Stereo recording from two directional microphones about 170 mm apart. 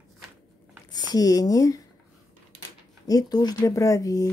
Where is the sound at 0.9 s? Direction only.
25° left (ahead or behind).